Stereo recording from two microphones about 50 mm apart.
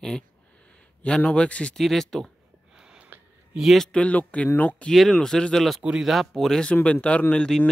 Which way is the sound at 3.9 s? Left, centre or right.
Left.